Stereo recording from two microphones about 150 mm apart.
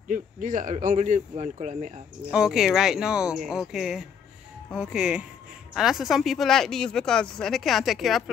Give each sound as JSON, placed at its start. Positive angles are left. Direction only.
{"t": 0.1, "sound": "speech", "side_deg": -60}
{"t": 2.3, "sound": "speech", "side_deg": -5}